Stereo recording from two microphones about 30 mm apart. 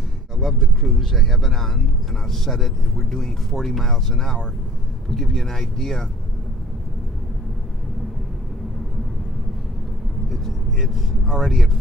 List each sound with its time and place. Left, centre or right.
0.4 s speech: centre
10.3 s speech: centre